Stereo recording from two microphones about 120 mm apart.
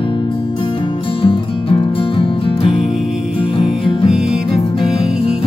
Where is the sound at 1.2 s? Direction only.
45° left (ahead or behind).